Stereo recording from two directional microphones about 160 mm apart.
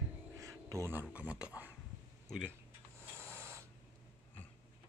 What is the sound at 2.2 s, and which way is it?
Speech, 5° left (ahead or behind).